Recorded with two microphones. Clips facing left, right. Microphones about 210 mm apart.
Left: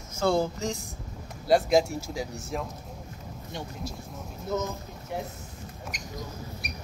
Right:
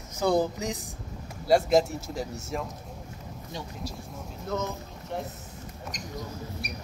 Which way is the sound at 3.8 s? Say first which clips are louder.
Even; 25° left (ahead or behind).